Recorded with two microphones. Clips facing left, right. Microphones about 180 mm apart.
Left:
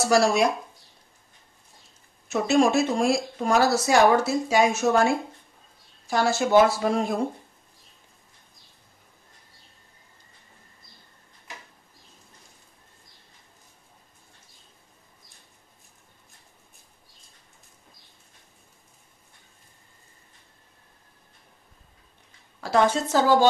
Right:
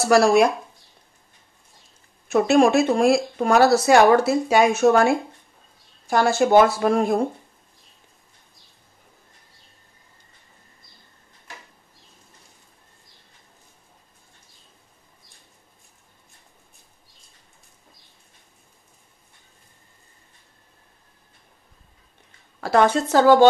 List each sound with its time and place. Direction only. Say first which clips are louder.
0.1 s speech: right 5 dB; 60° right (ahead or behind)
2.2 s speech: right 4 dB; 55° right (ahead or behind)
22.6 s speech: right 3 dB; 60° right (ahead or behind)